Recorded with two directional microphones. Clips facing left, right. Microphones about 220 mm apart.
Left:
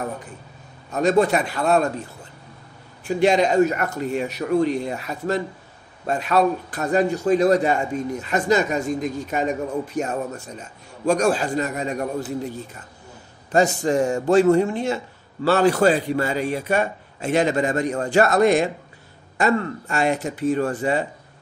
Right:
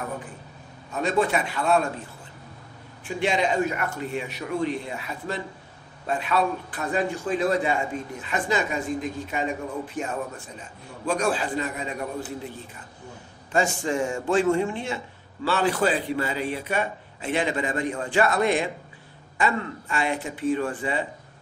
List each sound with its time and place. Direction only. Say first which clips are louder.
0.9 s speech: left 6 dB; 40° left (ahead or behind)
3.2 s a man's voice: left 7 dB; 40° left (ahead or behind)
13.5 s a man's voice: left 6 dB; 40° left (ahead or behind)